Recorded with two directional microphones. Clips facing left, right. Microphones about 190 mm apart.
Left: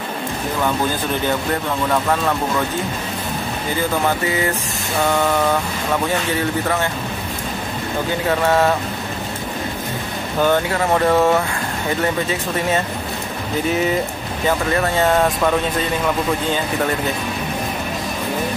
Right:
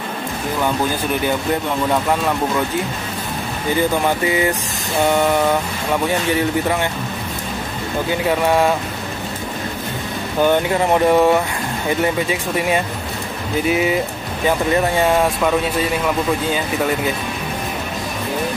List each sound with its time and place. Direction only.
1.5 s speech: 15° right (ahead or behind)
4.3 s speech: 15° right (ahead or behind)
8.3 s speech: 10° right (ahead or behind)
10.4 s speech: 15° right (ahead or behind)